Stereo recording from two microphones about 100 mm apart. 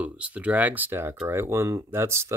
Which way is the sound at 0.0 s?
15° right (ahead or behind).